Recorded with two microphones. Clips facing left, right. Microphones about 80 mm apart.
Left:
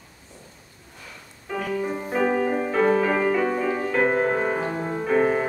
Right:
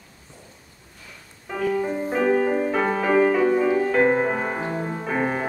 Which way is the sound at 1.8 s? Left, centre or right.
Centre.